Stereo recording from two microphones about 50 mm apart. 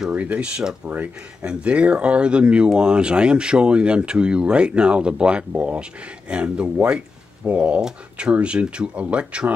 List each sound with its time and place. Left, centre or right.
0.1 s speech: right
1.4 s speech: right